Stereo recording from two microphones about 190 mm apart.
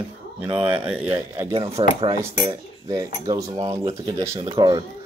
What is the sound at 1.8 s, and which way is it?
Speech, 25° right (ahead or behind).